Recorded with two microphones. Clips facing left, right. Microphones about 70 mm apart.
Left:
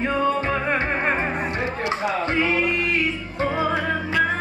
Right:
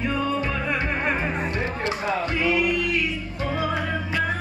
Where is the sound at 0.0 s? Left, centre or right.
Left.